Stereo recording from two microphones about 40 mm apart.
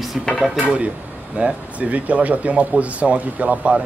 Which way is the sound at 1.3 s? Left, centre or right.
Right.